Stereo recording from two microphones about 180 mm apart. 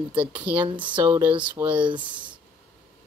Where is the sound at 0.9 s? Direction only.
25° right (ahead or behind).